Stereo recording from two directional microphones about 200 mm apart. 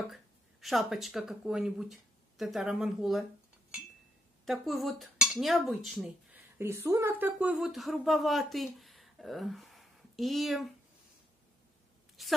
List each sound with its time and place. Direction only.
0.1 s speech: centre (ahead or behind)
4.5 s cutlery: centre (ahead or behind)
6.6 s speech: 15° right (ahead or behind)
12.2 s a woman's voice: centre (ahead or behind)